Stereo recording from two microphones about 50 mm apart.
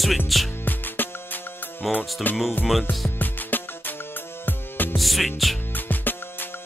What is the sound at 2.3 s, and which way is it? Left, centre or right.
Music, left.